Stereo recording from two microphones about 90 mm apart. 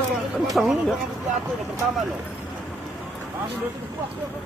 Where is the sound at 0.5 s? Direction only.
Centre (ahead or behind).